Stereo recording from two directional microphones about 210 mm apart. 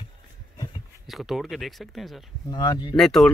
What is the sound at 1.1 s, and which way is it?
Speech, centre (ahead or behind).